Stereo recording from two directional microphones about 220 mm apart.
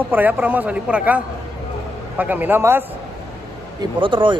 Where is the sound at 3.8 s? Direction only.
20° right (ahead or behind).